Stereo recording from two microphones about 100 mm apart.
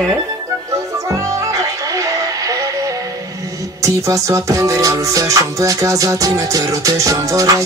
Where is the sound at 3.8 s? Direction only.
30° right (ahead or behind).